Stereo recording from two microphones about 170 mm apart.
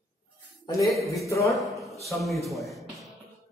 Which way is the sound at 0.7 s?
20° left (ahead or behind).